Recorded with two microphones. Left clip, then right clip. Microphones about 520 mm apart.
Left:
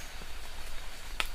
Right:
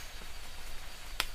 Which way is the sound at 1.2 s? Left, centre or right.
Right.